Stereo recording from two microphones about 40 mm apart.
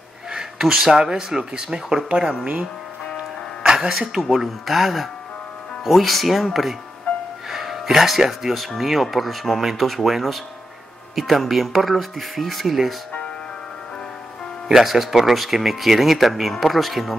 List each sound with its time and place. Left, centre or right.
0.3 s speech: centre
3.6 s music: right
3.9 s speech: centre
4.2 s speech: centre
14.7 s speech: centre